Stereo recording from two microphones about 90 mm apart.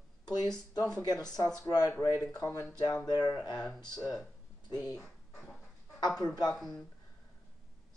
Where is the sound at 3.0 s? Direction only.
50° left (ahead or behind).